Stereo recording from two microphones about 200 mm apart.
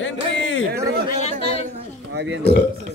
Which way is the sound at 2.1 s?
60° right (ahead or behind).